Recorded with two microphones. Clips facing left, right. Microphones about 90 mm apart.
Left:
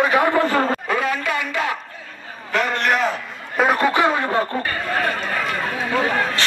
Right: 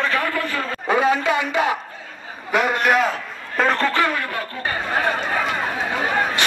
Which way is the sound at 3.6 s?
10° left (ahead or behind).